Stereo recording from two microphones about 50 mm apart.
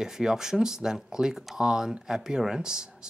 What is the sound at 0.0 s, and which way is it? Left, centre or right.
Speech, centre.